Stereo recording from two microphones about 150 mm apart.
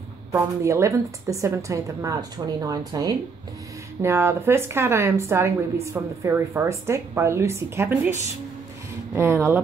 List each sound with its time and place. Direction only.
0.3 s a woman's voice: 15° right (ahead or behind)
9.1 s a woman's voice: 20° right (ahead or behind)